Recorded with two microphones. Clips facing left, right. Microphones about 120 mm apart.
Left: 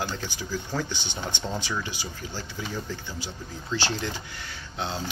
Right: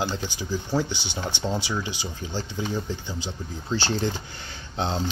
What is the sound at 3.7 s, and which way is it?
Speech, 35° right (ahead or behind).